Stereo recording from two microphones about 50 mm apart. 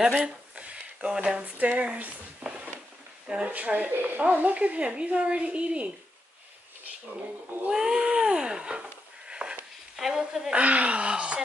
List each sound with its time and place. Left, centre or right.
0.2 s a sound: right
1.4 s speech: right
7.7 s speech: centre
9.3 s a sound: centre
9.9 s speech: centre
10.5 s speech: right